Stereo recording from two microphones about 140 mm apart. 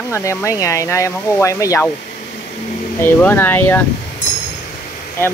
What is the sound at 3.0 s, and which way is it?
Speech, 15° left (ahead or behind).